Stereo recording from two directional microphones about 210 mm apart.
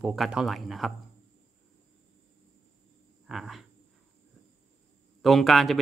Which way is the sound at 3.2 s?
Centre (ahead or behind).